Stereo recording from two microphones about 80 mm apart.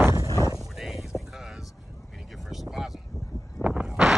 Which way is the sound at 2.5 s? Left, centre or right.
Centre.